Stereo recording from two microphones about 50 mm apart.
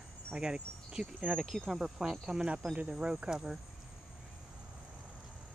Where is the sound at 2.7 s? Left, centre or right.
Right.